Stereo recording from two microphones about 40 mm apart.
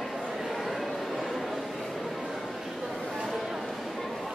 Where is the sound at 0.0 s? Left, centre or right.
Centre.